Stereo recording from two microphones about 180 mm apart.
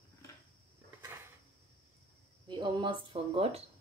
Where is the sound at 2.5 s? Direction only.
25° right (ahead or behind).